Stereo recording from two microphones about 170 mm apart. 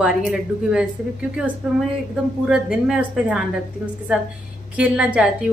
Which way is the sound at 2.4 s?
5° right (ahead or behind).